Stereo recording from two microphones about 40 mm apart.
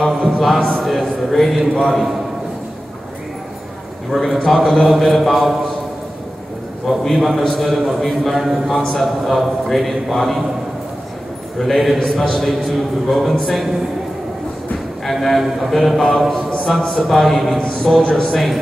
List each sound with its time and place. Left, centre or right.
0.3 s a man's voice: centre
4.1 s a man's voice: centre
7.2 s a man's voice: centre
11.5 s a man's voice: centre
15.0 s a man's voice: centre
17.6 s mantra: centre
18.0 s mantra: centre
18.3 s a man's voice: centre